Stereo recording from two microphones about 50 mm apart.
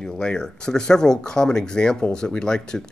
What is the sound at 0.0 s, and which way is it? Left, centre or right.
Speech, centre.